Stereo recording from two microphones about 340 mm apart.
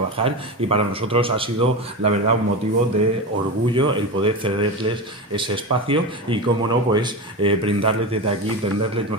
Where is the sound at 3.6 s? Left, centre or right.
Centre.